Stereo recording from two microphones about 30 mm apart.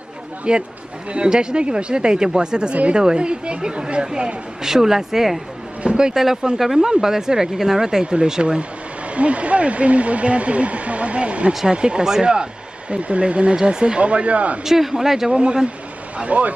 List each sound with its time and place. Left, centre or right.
0.5 s a woman's voice: right
4.6 s a woman's voice: centre; by 8.6 s right
9.1 s a woman's voice: right
12.9 s speech: right
14.6 s speech: centre
15.3 s a woman's voice: right
16.3 s speech: right